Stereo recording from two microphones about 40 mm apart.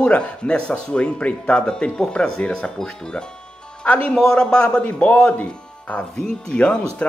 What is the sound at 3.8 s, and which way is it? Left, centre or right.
Speech, left.